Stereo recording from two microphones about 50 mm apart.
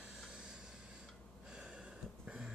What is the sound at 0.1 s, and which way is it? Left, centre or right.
Vehicle, centre.